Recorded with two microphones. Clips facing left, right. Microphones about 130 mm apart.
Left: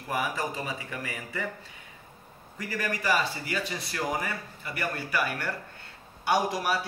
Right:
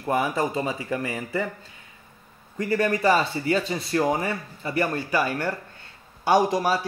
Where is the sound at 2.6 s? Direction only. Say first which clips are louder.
Right 10 dB; 25° right (ahead or behind).